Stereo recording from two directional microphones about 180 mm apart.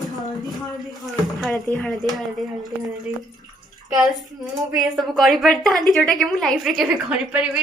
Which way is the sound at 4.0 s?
Centre (ahead or behind).